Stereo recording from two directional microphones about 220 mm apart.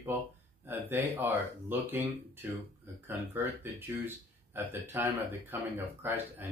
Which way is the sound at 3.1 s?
10° right (ahead or behind).